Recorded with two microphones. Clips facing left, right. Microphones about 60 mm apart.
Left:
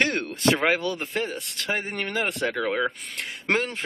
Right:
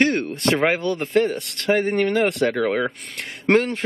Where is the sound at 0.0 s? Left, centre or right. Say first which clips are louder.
Right 5 dB; right.